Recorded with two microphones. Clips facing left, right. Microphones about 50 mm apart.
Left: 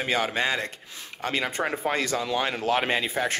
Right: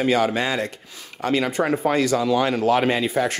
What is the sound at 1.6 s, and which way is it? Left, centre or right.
Speech, right.